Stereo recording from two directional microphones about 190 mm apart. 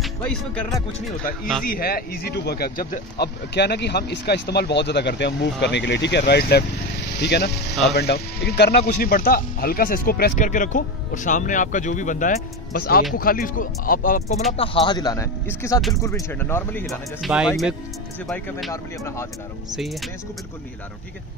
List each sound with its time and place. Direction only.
0.0 s speech: 5° left (ahead or behind)
1.6 s speech: 50° left (ahead or behind)
14.6 s speech: 30° left (ahead or behind); by 16.8 s 10° left (ahead or behind)
16.8 s speech: centre (ahead or behind)
18.7 s speech: 15° left (ahead or behind)
19.7 s speech: centre (ahead or behind)